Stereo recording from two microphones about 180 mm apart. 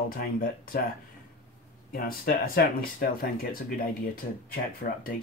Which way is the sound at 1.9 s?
55° left (ahead or behind).